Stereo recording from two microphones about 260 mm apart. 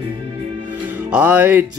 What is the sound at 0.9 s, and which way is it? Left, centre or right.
Music, centre.